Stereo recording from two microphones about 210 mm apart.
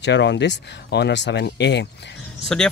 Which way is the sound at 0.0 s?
55° left (ahead or behind).